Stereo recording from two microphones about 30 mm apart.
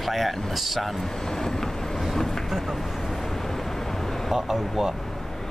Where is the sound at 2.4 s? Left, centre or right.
Centre.